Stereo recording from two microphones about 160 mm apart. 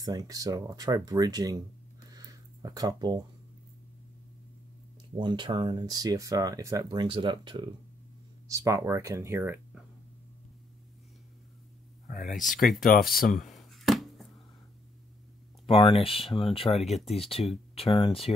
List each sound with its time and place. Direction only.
0.0 s speech: 20° right (ahead or behind)
2.0 s a sound: 20° right (ahead or behind)
5.1 s speech: 30° right (ahead or behind)
12.1 s speech: 55° left (ahead or behind)
13.5 s a sound: centre (ahead or behind)
15.8 s speech: 35° left (ahead or behind)